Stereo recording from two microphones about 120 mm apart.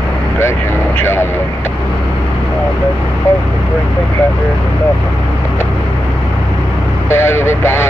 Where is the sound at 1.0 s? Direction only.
20° left (ahead or behind).